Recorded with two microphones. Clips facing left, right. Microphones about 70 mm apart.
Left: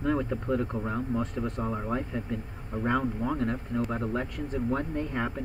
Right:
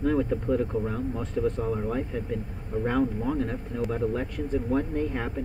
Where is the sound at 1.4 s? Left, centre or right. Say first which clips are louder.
Right 4 dB; left.